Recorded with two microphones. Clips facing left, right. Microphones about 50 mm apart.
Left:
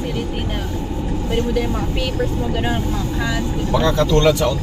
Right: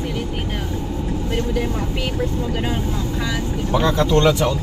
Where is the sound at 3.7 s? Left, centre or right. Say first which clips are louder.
Left 1 dB; right.